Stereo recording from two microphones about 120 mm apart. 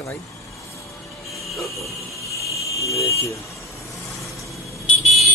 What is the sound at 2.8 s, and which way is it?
Speech, 25° left (ahead or behind).